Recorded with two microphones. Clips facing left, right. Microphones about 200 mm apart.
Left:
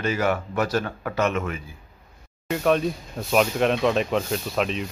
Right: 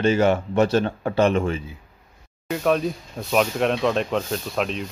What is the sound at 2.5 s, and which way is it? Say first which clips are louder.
Speech: even; centre (ahead or behind).